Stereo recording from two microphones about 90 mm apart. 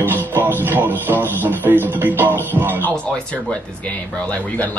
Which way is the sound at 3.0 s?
15° left (ahead or behind).